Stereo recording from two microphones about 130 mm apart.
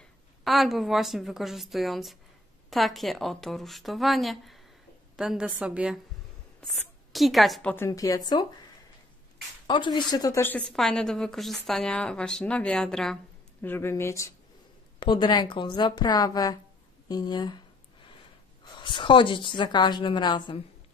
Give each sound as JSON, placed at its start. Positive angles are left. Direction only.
{"t": 0.4, "sound": "a woman's voice", "side_deg": 0}
{"t": 7.7, "sound": "speech", "side_deg": 20}
{"t": 9.7, "sound": "a woman's voice", "side_deg": 35}
{"t": 10.4, "sound": "a woman's voice", "side_deg": 15}
{"t": 13.6, "sound": "speech", "side_deg": 15}
{"t": 15.0, "sound": "a woman's voice", "side_deg": 40}
{"t": 17.1, "sound": "a sound", "side_deg": 35}
{"t": 18.8, "sound": "a woman's voice", "side_deg": 40}